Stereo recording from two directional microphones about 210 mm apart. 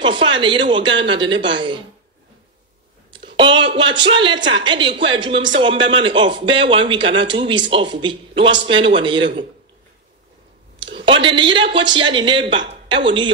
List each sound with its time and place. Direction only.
0.0 s speech: 20° right (ahead or behind)
3.3 s a woman's voice: 25° right (ahead or behind)
10.9 s speech: 25° right (ahead or behind)